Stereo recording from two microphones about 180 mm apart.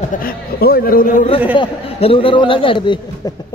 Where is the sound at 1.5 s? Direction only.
30° left (ahead or behind).